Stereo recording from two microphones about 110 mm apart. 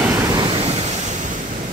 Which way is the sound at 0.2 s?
40° right (ahead or behind).